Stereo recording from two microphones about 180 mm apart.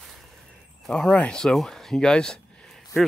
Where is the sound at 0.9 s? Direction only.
5° left (ahead or behind).